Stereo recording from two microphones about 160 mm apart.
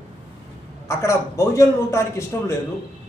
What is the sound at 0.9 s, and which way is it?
A woman's voice, 20° left (ahead or behind).